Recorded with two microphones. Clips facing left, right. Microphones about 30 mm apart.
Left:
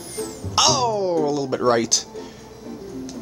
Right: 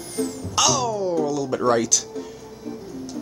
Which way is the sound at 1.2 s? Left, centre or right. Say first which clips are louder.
Left 2 dB; left.